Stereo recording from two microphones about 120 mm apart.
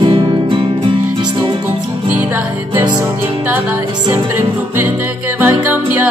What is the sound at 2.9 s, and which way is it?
Music, 30° right (ahead or behind).